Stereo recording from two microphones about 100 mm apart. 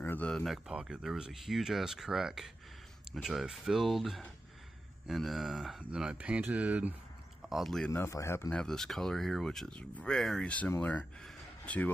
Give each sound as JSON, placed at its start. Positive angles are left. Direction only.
{"t": 0.0, "sound": "a sound", "side_deg": 20}
{"t": 0.3, "sound": "speech", "side_deg": 0}
{"t": 7.4, "sound": "speech", "side_deg": 0}
{"t": 7.9, "sound": "speech", "side_deg": 25}
{"t": 8.5, "sound": "speech", "side_deg": 5}
{"t": 11.2, "sound": "a sound", "side_deg": 15}